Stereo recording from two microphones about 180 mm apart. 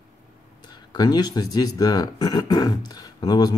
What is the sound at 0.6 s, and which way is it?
Speech, 25° left (ahead or behind).